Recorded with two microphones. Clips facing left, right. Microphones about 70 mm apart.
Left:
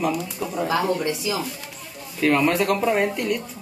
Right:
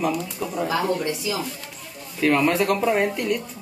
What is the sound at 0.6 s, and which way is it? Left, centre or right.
Speech, centre.